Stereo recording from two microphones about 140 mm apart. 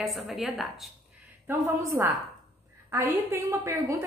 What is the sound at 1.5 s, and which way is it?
A woman's voice, 20° right (ahead or behind).